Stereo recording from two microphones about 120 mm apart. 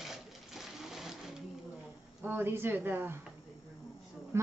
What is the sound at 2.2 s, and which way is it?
Speech, 20° right (ahead or behind).